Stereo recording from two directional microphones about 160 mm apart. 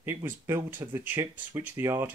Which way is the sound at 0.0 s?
15° right (ahead or behind).